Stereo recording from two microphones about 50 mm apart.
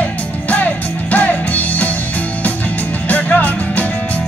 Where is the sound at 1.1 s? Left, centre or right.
Left.